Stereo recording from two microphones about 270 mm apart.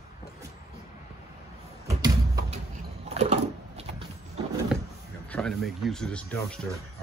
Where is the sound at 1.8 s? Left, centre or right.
Centre.